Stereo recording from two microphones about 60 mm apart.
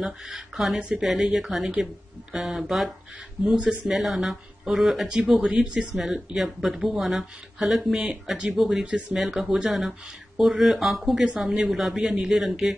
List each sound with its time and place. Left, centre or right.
0.0 s speech: centre
7.9 s speech: centre
8.5 s speech: centre